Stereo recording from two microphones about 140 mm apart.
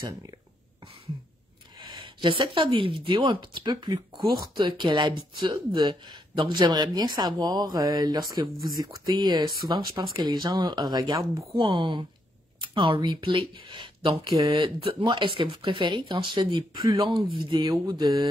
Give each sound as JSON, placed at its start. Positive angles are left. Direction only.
{"t": 2.0, "sound": "speech", "side_deg": -35}